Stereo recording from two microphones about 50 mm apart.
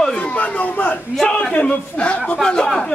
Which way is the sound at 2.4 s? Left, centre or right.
Centre.